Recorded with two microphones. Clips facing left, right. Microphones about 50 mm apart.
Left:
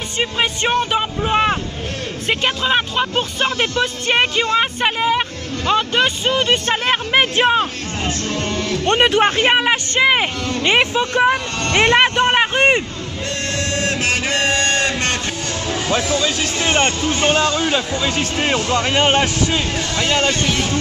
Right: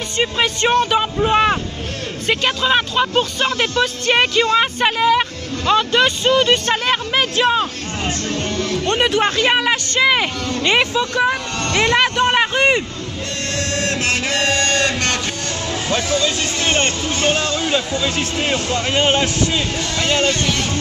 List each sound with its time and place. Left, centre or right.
0.2 s speech: centre
6.9 s speech: left
8.8 s speech: left
9.2 s speech: left
13.8 s music: centre
15.7 s speech: centre
20.2 s speech: centre